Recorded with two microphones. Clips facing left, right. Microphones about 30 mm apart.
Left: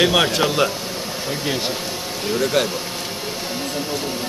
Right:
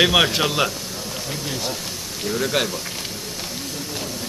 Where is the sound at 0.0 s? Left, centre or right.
Centre.